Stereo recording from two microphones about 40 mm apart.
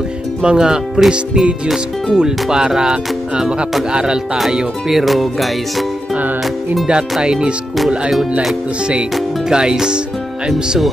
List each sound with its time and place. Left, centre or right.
0.4 s speech: centre
4.9 s music: centre
6.9 s speech: right
8.1 s music: centre
9.5 s speech: centre